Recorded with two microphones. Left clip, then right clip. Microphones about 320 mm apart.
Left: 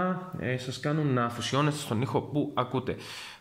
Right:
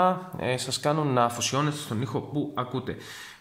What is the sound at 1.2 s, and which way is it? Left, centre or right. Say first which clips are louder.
A man's voice: right 3 dB; centre.